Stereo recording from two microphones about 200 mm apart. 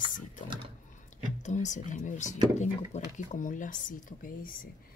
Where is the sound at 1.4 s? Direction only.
35° left (ahead or behind).